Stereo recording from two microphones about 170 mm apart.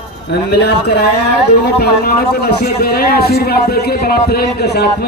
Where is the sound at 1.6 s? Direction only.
65° left (ahead or behind).